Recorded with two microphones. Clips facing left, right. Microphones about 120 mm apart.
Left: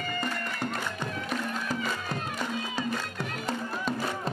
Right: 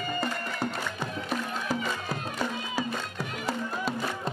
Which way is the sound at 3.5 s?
5° right (ahead or behind).